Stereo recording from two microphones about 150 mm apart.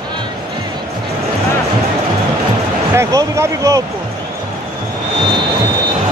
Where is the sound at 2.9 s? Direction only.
20° right (ahead or behind).